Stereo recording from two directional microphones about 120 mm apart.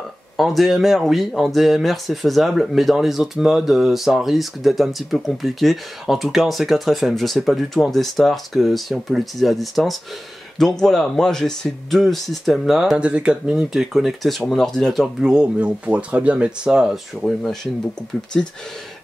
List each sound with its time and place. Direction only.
0.4 s speech: centre (ahead or behind)